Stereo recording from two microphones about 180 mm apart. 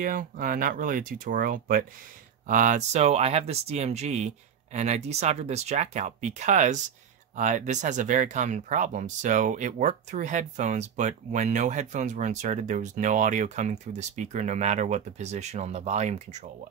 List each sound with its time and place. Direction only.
0.0 s speech: 50° right (ahead or behind)